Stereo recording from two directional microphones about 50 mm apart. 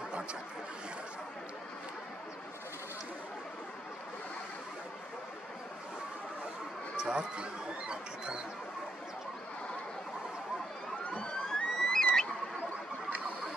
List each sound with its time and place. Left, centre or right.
7.0 s speech: centre
11.1 s emergency vehicle: left
11.4 s a sound: centre